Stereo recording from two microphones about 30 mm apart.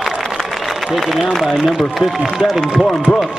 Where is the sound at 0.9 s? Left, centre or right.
Centre.